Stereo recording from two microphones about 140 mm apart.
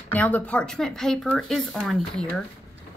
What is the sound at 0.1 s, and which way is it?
Speech, 10° left (ahead or behind).